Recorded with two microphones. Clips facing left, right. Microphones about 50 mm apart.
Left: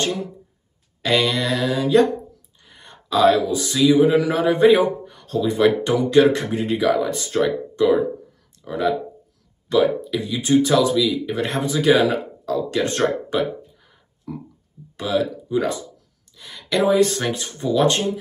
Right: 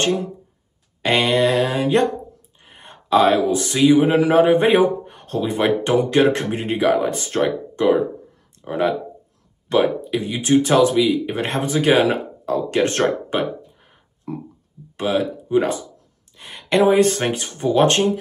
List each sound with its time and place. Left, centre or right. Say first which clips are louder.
0.0 s speech: right 4 dB; right
1.0 s speech: right 3 dB; right
2.6 s a sound: right 3 dB; right
3.5 s speech: right 1 dB; right
16.3 s a sound: right 4 dB; right
16.8 s speech: right 2 dB; right